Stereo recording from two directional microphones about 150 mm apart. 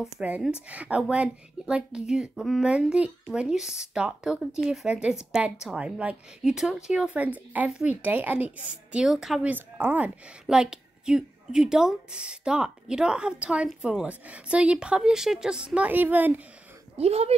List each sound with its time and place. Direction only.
0.0 s a woman's voice: 5° right (ahead or behind)
16.9 s speech: 45° right (ahead or behind)